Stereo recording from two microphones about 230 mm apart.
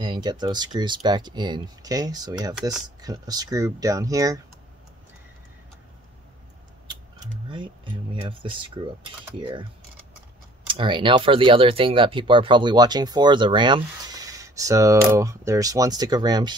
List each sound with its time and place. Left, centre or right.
0.0 s speech: centre
7.4 s speech: right
10.7 s speech: right